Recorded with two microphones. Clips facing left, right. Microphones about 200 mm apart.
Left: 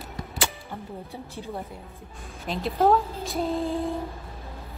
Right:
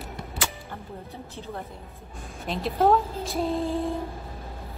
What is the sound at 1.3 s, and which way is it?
Speech, 15° left (ahead or behind).